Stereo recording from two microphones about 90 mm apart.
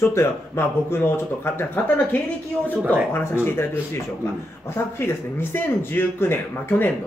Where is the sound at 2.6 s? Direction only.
15° right (ahead or behind).